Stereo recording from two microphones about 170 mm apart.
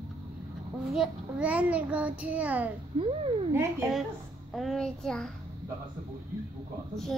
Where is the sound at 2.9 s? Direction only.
35° right (ahead or behind).